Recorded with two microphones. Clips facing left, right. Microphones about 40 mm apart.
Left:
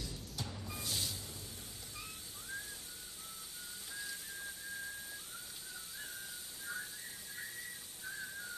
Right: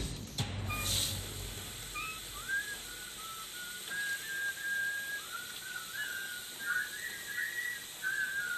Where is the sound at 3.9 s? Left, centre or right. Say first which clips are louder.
Right 10 dB; right.